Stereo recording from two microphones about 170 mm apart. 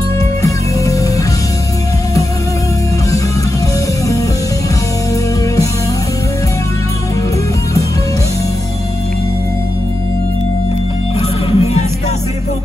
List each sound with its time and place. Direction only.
0.4 s music: 20° left (ahead or behind)
11.1 s music: 40° left (ahead or behind)